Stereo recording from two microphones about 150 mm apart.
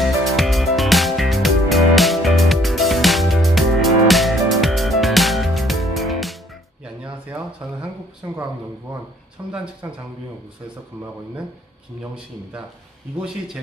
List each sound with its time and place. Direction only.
0.0 s music: centre (ahead or behind)
7.0 s a sound: 10° right (ahead or behind)
8.2 s speech: 20° right (ahead or behind)
9.4 s speech: 20° right (ahead or behind)